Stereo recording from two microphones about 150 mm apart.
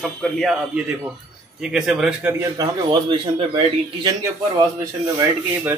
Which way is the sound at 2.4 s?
25° right (ahead or behind).